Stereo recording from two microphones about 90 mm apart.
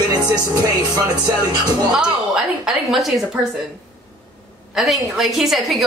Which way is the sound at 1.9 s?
10° right (ahead or behind).